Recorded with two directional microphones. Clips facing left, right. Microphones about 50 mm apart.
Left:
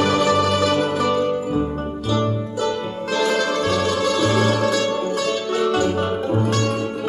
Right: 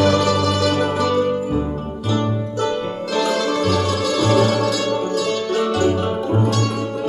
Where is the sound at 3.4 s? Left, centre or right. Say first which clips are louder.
Right 1 dB; centre.